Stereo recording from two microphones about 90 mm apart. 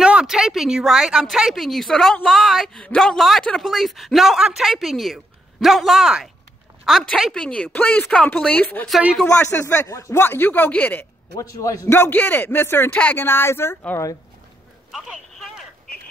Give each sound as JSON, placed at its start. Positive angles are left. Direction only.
{"t": 0.0, "sound": "speech", "side_deg": -10}
{"t": 7.3, "sound": "speech", "side_deg": 10}
{"t": 9.4, "sound": "speech", "side_deg": 35}
{"t": 10.2, "sound": "speech", "side_deg": 20}
{"t": 11.3, "sound": "speech", "side_deg": 40}
{"t": 11.9, "sound": "speech", "side_deg": 25}
{"t": 14.9, "sound": "speech", "side_deg": 0}